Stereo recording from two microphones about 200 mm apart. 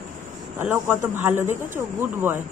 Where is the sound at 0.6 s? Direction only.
10° right (ahead or behind).